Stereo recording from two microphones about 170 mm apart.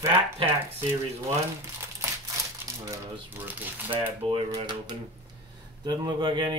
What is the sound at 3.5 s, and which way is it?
Speech, 10° right (ahead or behind).